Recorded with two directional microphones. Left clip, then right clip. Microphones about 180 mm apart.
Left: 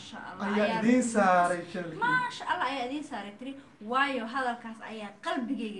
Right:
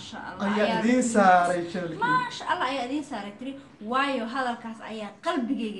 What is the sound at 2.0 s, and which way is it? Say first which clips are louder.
A woman's voice: right 3 dB; 15° left (ahead or behind).